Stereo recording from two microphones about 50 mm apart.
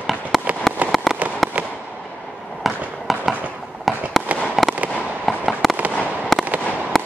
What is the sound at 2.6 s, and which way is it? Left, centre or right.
Fireworks, centre.